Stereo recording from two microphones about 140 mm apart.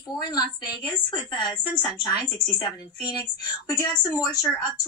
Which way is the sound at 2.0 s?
30° left (ahead or behind).